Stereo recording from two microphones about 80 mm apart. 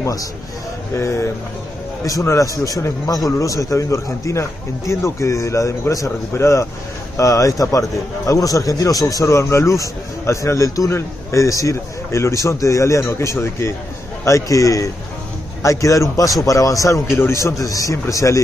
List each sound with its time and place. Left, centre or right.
0.0 s a man's voice: left
0.9 s a man's voice: left